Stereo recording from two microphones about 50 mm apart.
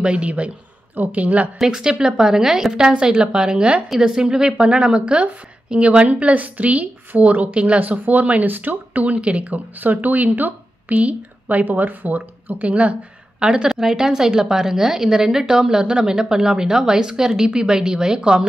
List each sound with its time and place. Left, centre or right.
0.0 s a woman's voice: right
0.9 s a woman's voice: right
1.6 s a woman's voice: centre